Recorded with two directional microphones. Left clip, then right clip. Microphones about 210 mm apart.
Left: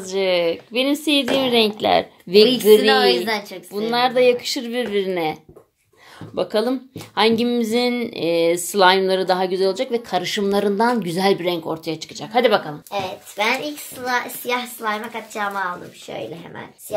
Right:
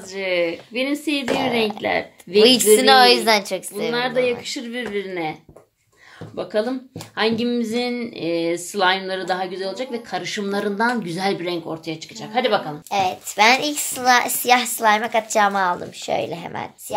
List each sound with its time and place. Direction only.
0.0 s speech: 40° left (ahead or behind)
2.8 s a woman's voice: 45° right (ahead or behind)
3.9 s speech: 40° left (ahead or behind)
12.9 s a woman's voice: 50° right (ahead or behind)